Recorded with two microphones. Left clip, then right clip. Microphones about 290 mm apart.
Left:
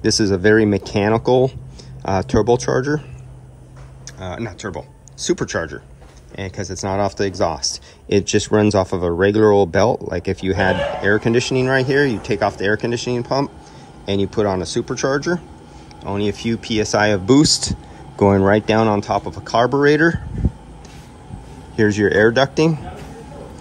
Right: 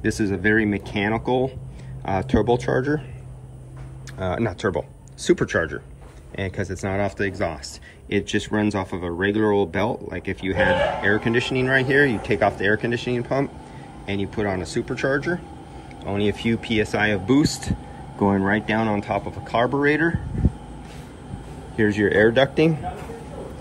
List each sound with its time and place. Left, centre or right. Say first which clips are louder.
0.0 s speech: left 6 dB; centre
4.2 s speech: right 4 dB; centre
21.7 s speech: left 4 dB; centre